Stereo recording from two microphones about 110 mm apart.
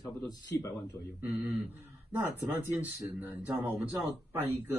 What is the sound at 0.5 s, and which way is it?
Speech, 25° left (ahead or behind).